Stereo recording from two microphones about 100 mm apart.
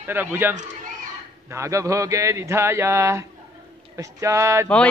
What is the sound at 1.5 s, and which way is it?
A man's voice, 30° right (ahead or behind).